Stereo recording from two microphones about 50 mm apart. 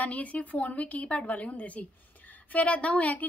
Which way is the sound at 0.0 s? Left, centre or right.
Left.